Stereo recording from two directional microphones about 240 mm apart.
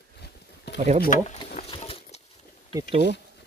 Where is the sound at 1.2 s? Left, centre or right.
Left.